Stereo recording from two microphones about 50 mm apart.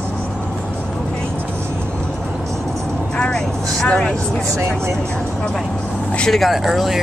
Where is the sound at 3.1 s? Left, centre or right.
Centre.